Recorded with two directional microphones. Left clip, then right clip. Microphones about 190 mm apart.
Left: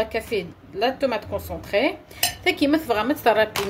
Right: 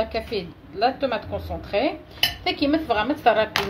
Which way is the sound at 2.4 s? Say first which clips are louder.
Left 5 dB; 40° left (ahead or behind).